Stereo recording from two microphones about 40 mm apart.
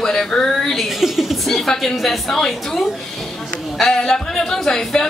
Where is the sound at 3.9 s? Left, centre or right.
Centre.